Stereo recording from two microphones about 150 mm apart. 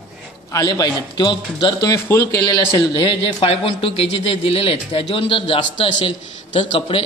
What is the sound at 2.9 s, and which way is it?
Speech, 35° left (ahead or behind).